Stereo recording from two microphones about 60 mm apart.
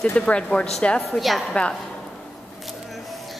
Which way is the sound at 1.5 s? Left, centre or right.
Centre.